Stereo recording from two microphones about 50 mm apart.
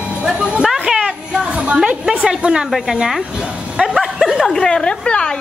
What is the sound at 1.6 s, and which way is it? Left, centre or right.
A woman's voice, centre.